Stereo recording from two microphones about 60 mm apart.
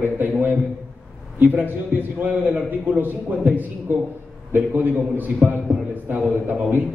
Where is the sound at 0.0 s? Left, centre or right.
Right.